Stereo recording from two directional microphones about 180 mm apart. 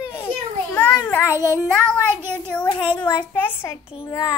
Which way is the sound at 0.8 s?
10° left (ahead or behind).